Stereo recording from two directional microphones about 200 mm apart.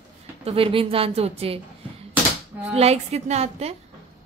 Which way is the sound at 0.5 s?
25° right (ahead or behind).